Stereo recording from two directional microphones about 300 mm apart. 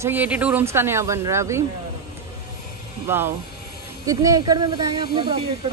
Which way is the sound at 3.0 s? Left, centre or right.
Centre.